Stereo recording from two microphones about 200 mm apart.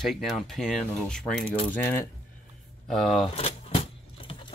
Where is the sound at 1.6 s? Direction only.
10° left (ahead or behind).